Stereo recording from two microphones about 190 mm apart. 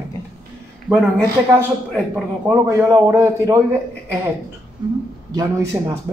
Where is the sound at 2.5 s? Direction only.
15° right (ahead or behind).